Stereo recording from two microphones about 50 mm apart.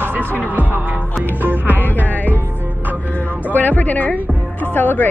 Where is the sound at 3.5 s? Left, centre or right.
Left.